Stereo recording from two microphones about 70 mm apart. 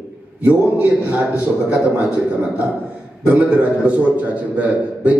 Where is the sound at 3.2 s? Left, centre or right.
Centre.